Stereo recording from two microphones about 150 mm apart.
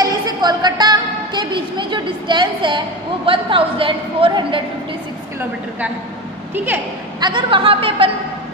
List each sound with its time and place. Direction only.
0.0 s a woman's voice: 30° right (ahead or behind)
6.5 s speech: 15° right (ahead or behind)
7.2 s a woman's voice: 30° right (ahead or behind)